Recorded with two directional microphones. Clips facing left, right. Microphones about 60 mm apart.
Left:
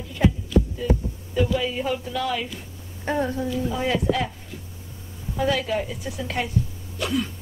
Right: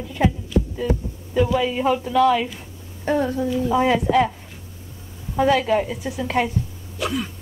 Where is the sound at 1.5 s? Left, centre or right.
Centre.